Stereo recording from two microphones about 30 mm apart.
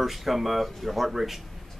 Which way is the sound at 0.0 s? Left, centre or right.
Centre.